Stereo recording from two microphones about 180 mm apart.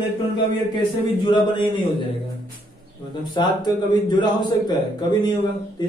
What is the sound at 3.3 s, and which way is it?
Speech, 25° left (ahead or behind).